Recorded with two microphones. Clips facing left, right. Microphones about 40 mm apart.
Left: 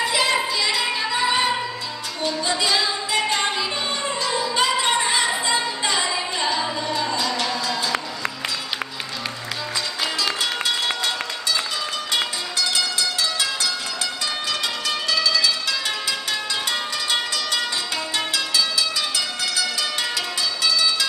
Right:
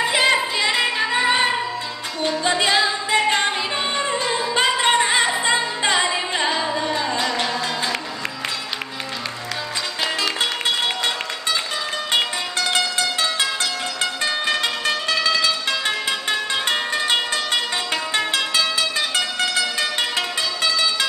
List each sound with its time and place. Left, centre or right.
0.1 s singing: right
2.2 s music: right
12.1 s music: right
14.2 s zither: right
16.1 s music: right